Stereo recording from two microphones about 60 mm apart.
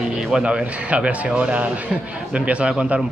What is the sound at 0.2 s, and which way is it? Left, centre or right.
A man's voice, centre.